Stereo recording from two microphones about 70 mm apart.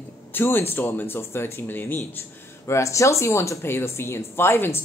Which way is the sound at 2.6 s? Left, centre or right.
Left.